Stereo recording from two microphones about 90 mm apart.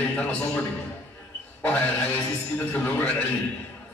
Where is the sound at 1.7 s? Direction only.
15° left (ahead or behind).